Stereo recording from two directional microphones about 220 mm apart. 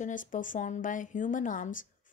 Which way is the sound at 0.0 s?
35° left (ahead or behind).